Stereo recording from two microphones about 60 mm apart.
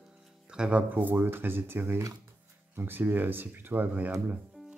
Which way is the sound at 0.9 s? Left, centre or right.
Right.